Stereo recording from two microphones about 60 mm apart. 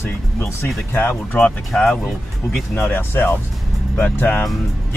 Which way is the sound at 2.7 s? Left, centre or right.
Left.